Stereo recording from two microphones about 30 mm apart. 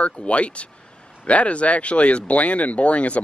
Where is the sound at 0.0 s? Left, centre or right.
Left.